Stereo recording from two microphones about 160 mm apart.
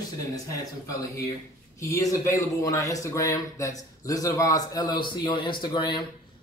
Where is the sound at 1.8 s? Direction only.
20° left (ahead or behind).